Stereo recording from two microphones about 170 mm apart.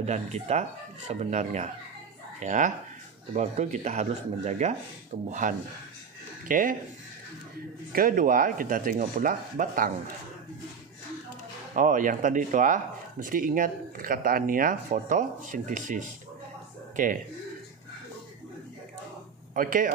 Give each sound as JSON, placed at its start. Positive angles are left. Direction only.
{"t": 0.0, "sound": "speech", "side_deg": -40}
{"t": 7.9, "sound": "speech", "side_deg": -55}
{"t": 11.7, "sound": "speech", "side_deg": -50}
{"t": 19.5, "sound": "speech", "side_deg": -55}